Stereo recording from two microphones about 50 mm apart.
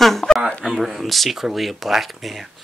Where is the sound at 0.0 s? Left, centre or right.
Centre.